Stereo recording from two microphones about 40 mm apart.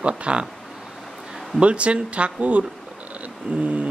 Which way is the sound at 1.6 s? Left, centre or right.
Right.